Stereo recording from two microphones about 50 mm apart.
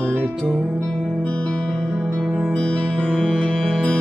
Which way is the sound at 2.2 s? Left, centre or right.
Centre.